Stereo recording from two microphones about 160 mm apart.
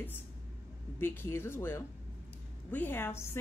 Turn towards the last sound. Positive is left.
turn(degrees=15)  # may be behind; listen again after turning